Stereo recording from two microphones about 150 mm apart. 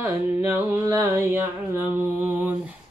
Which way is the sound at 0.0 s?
15° right (ahead or behind).